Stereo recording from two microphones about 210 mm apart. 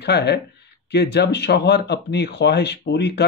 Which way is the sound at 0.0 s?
50° left (ahead or behind).